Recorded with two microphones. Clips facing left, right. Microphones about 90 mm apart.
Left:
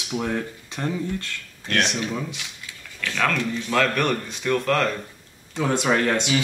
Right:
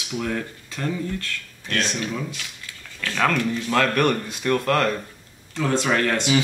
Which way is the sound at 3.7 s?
5° right (ahead or behind).